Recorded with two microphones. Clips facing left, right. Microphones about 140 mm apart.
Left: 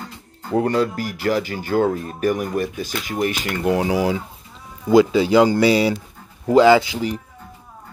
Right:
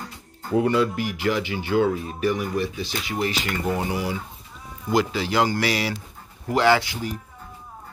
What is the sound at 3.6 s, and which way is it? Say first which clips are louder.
Speech: left 8 dB; 90° left.